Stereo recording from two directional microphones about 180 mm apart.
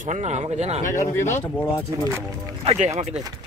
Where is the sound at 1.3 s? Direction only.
10° left (ahead or behind).